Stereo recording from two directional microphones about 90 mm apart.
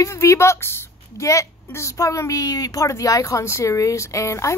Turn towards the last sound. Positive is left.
turn(degrees=35)  # may be behind; listen again after turning